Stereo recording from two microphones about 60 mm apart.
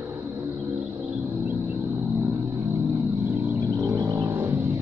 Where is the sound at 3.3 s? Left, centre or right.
Right.